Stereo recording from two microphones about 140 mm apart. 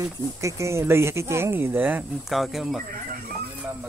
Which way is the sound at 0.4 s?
20° right (ahead or behind).